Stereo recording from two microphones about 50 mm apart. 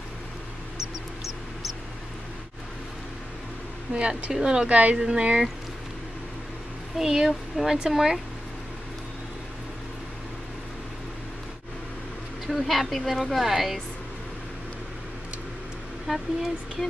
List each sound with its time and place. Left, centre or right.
0.7 s a sound: centre
3.9 s speech: right
7.0 s speech: centre
12.4 s a woman's voice: centre
16.1 s speech: centre